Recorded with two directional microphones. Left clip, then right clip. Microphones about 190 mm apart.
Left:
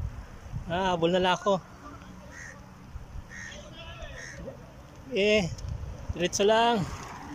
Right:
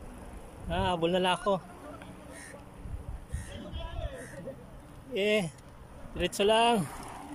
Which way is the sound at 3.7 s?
30° right (ahead or behind).